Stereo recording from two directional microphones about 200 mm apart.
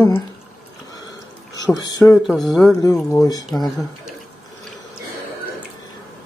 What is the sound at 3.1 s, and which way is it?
Speech, 20° left (ahead or behind).